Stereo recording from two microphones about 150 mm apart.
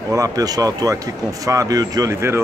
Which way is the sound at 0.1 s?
20° right (ahead or behind).